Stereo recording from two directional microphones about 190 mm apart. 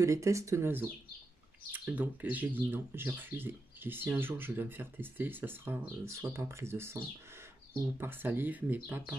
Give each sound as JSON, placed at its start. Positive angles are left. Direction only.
{"t": 0.0, "sound": "speech", "side_deg": -15}